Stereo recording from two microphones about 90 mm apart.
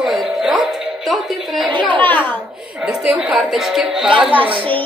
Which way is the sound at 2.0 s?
20° left (ahead or behind).